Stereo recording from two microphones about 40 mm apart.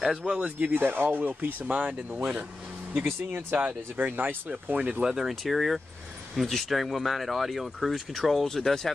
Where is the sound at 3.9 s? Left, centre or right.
Right.